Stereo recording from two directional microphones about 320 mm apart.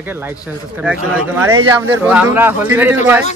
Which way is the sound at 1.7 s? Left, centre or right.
Centre.